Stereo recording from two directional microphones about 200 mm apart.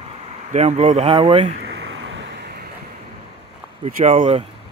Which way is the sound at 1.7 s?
70° right (ahead or behind).